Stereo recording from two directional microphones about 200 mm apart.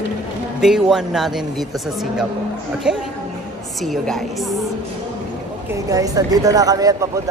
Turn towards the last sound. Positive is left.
turn(degrees=-15)  # may be behind; listen again after turning